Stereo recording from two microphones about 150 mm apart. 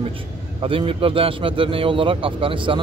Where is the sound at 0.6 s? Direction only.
35° right (ahead or behind).